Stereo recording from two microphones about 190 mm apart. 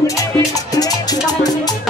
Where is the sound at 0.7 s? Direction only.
20° left (ahead or behind).